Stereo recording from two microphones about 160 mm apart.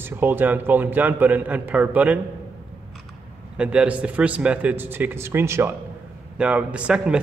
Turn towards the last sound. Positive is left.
turn(degrees=-5)  # may be behind; listen again after turning